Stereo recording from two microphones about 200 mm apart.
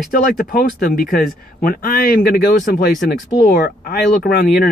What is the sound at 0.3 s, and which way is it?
Speech, 45° left (ahead or behind).